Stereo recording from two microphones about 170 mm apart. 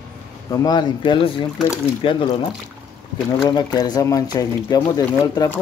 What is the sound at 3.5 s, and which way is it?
Speech, 25° left (ahead or behind).